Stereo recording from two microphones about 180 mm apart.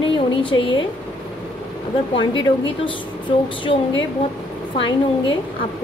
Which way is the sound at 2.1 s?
30° left (ahead or behind).